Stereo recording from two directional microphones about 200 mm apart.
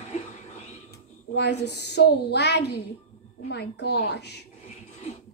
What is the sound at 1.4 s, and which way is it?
A woman's voice, 55° left (ahead or behind).